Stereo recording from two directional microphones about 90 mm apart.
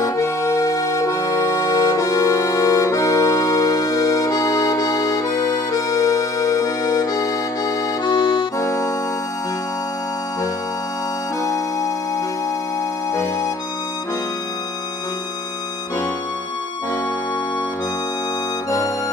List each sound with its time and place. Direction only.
0.0 s music: 35° left (ahead or behind)
8.5 s music: 35° left (ahead or behind)
11.4 s music: 35° left (ahead or behind)
13.1 s music: 35° left (ahead or behind)